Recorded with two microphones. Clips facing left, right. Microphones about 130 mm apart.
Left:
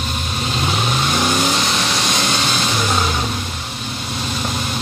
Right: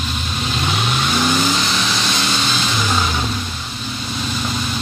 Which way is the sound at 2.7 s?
15° left (ahead or behind).